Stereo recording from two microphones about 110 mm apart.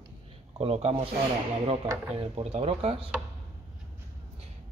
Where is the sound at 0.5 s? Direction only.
70° right (ahead or behind).